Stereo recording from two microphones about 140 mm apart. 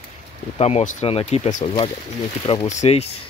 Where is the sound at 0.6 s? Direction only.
55° left (ahead or behind).